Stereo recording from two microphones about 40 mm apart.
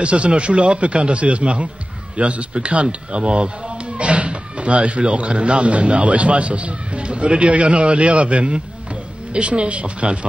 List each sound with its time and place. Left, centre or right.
0.0 s a man's voice: right